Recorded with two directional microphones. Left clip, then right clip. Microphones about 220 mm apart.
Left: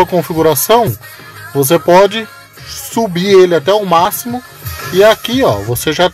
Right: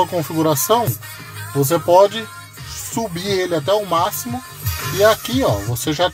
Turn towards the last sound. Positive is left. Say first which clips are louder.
# left 7 dB
turn(degrees=35)  # may be behind; listen again after turning